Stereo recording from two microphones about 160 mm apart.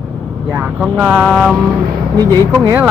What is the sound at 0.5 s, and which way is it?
Speech, 15° right (ahead or behind).